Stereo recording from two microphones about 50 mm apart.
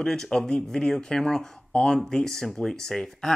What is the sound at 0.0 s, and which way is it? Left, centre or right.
Speech, centre.